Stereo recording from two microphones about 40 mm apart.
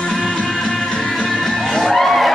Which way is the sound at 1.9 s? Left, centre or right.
Centre.